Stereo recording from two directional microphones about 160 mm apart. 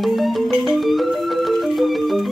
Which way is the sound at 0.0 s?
Centre (ahead or behind).